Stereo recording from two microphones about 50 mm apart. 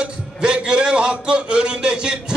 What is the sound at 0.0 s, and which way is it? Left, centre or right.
A man's voice, centre.